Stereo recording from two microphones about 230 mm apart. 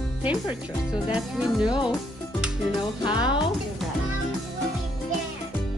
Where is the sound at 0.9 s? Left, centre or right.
Centre.